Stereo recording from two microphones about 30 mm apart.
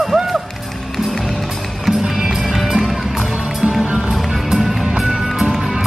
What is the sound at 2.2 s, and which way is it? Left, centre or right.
Music, centre.